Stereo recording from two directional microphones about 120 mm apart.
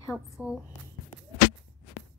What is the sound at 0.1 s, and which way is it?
Speech, 5° right (ahead or behind).